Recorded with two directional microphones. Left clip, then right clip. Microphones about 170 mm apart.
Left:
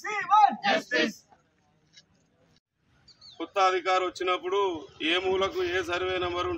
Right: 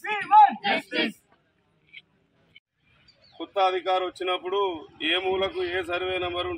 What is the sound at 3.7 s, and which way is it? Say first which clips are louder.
A man's voice: even; 20° left (ahead or behind).